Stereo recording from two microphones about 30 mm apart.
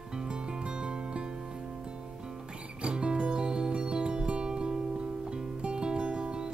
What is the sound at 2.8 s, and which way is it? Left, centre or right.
Music, right.